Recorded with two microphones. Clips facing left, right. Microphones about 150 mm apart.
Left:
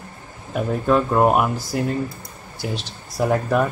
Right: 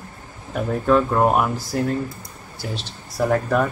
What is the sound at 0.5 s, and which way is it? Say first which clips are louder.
Speech: right 1 dB; 10° left (ahead or behind).